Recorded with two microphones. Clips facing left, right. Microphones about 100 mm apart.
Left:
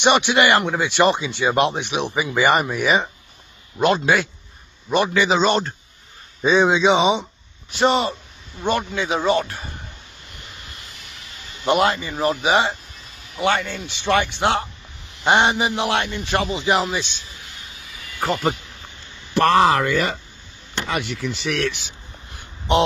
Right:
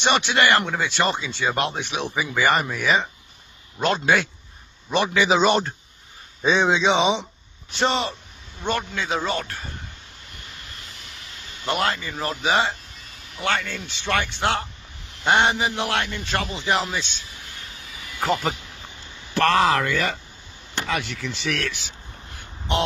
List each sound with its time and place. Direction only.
0.0 s speech: 15° left (ahead or behind)
3.8 s a man's voice: 5° left (ahead or behind)
11.6 s speech: 20° left (ahead or behind)
18.2 s a man's voice: 5° left (ahead or behind)